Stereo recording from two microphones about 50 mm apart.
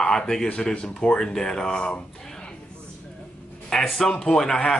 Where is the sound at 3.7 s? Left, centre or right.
Centre.